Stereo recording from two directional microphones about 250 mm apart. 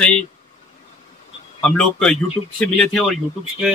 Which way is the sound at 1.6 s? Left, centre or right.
Centre.